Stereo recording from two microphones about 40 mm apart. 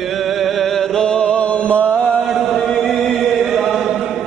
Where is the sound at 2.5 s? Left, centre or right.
Centre.